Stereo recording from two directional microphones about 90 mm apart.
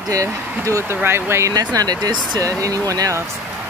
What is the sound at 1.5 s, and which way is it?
Speech, 45° right (ahead or behind).